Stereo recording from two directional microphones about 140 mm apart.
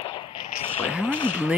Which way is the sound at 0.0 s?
35° left (ahead or behind).